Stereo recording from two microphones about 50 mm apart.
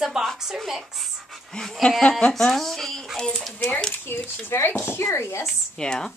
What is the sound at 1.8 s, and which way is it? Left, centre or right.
A woman's voice, centre.